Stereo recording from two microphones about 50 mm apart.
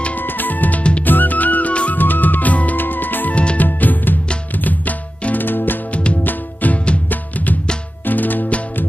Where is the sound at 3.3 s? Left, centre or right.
Left.